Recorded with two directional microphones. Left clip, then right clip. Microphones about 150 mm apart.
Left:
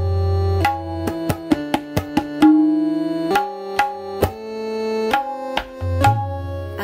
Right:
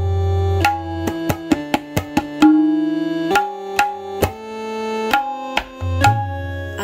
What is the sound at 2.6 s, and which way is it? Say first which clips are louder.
Tabla: even; 20° left (ahead or behind).